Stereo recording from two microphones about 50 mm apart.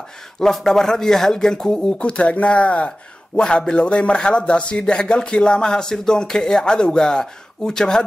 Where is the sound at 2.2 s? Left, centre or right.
Left.